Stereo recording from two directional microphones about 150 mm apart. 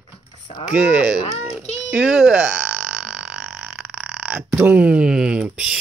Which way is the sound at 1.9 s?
5° right (ahead or behind).